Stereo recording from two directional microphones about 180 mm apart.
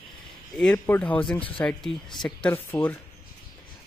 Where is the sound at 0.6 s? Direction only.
10° left (ahead or behind).